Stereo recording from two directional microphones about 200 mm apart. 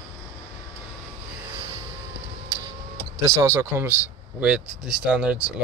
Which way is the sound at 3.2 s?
15° right (ahead or behind).